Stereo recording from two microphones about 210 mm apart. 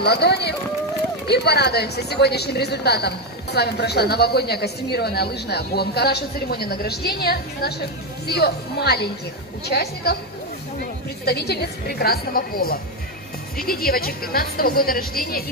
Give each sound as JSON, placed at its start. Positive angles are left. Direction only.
{"t": 0.0, "sound": "a woman's voice", "side_deg": 50}
{"t": 11.2, "sound": "a woman's voice", "side_deg": 50}